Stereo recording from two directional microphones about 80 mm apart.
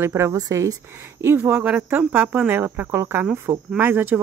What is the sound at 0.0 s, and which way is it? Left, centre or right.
Speech, right.